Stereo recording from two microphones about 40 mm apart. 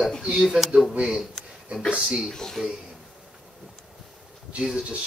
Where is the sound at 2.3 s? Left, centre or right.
Centre.